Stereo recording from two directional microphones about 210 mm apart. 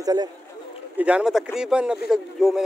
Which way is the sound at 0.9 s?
5° right (ahead or behind).